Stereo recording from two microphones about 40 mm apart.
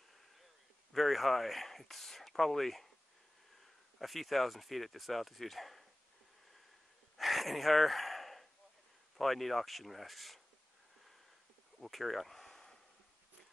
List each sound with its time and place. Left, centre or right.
0.9 s speech: centre
4.0 s speech: centre
7.2 s gasp: centre
9.2 s speech: centre
11.8 s a sound: centre